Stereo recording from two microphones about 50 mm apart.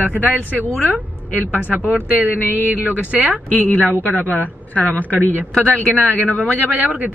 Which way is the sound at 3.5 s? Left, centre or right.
Left.